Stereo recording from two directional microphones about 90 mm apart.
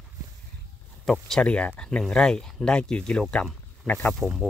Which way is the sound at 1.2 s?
10° left (ahead or behind).